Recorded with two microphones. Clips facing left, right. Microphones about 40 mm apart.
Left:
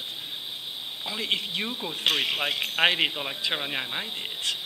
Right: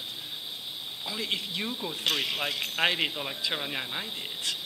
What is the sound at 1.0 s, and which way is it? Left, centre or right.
Speech, left.